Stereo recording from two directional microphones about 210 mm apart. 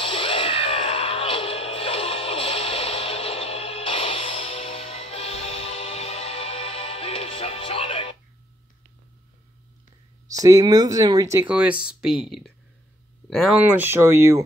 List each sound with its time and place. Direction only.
0.0 s music: 25° left (ahead or behind)
10.2 s speech: 15° right (ahead or behind); by 13.6 s centre (ahead or behind)
13.7 s speech: 10° right (ahead or behind)